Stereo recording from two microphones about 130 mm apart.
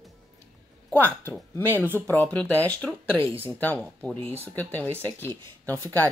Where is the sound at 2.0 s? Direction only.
15° left (ahead or behind).